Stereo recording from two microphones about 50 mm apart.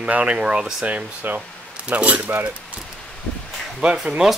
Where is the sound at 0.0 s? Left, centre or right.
Right.